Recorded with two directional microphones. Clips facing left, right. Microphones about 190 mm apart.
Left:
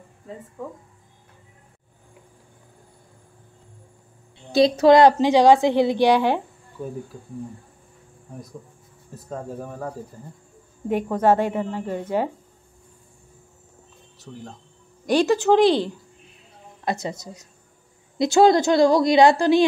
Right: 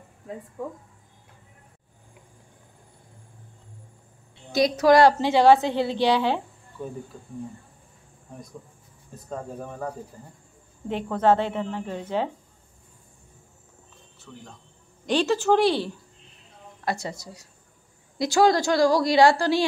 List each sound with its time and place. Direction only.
0.6 s speech: 10° right (ahead or behind)
4.5 s a woman's voice: 30° left (ahead or behind); by 6.4 s 15° left (ahead or behind)
9.1 s speech: 5° left (ahead or behind)
10.9 s a woman's voice: 10° left (ahead or behind)
14.3 s a woman's voice: 25° left (ahead or behind)
15.0 s a woman's voice: 15° left (ahead or behind)